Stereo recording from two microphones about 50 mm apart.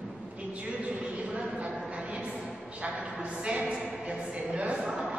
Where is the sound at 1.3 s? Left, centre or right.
Right.